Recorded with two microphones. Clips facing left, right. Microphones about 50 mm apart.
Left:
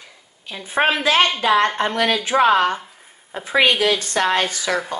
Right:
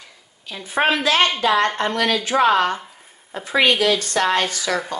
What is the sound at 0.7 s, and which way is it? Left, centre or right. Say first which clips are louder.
A woman's voice: left 1 dB; left.